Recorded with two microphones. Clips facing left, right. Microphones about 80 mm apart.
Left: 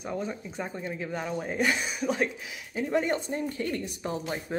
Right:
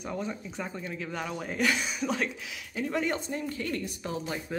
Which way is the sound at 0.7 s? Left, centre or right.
Left.